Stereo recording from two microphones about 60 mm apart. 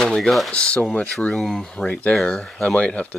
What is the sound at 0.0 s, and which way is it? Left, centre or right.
Speech, centre.